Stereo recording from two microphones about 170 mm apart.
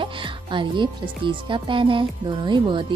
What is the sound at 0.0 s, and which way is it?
Speech, 30° right (ahead or behind).